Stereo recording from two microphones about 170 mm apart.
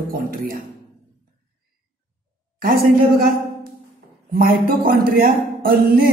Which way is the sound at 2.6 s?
60° right (ahead or behind).